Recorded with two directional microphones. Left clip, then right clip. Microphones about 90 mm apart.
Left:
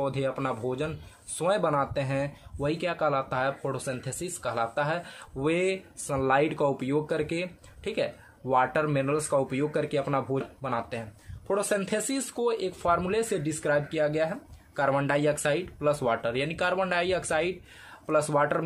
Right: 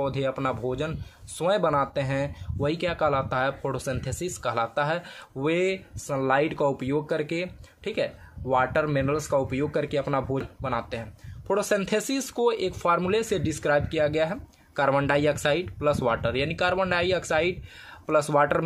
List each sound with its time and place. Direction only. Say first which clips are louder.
0.0 s speech: right 2 dB; 35° right (ahead or behind)
11.4 s speech: right 3 dB; 60° right (ahead or behind); by 17.6 s 40° right (ahead or behind)
18.0 s speech: right 3 dB; 55° right (ahead or behind)